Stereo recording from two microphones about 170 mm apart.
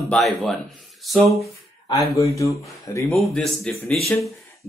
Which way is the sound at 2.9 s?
15° left (ahead or behind).